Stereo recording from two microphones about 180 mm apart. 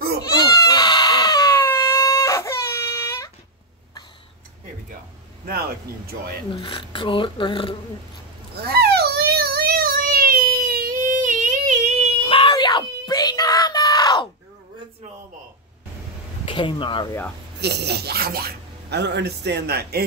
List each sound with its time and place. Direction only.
0.4 s goat: 20° left (ahead or behind)
5.4 s speech: 55° right (ahead or behind)
6.5 s speech: 30° left (ahead or behind)
8.5 s child singing: 60° right (ahead or behind); by 12.1 s 40° right (ahead or behind)
12.3 s screaming: 30° left (ahead or behind)
16.4 s speech: 25° left (ahead or behind)
17.6 s speech: 65° right (ahead or behind)